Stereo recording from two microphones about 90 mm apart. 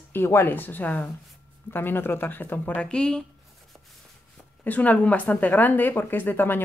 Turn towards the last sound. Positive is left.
turn(degrees=20)  # may be behind; listen again after turning